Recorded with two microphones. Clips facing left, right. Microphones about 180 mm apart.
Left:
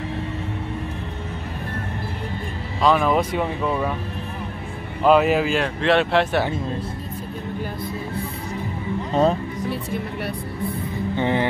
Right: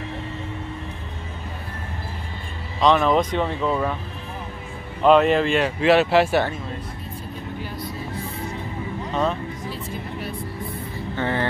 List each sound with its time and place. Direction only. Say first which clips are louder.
2.8 s speech: right 1 dB; 5° left (ahead or behind)
5.0 s speech: right 1 dB; 5° left (ahead or behind)
9.1 s speech: left 5 dB; 35° left (ahead or behind)
9.7 s speech: left 5 dB; 65° left (ahead or behind)
11.1 s speech: left 3 dB; 15° left (ahead or behind)